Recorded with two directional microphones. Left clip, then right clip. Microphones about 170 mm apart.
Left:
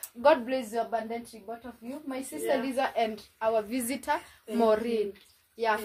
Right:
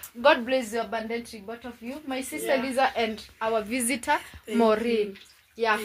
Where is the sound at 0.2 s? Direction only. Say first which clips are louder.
Right 2 dB; 15° right (ahead or behind).